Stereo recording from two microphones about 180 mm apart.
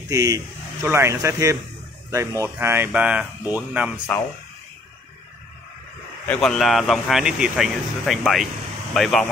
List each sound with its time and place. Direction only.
0.1 s speech: 20° right (ahead or behind)
6.2 s speech: 5° left (ahead or behind)